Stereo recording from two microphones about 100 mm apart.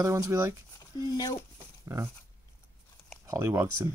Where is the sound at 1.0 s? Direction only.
40° left (ahead or behind).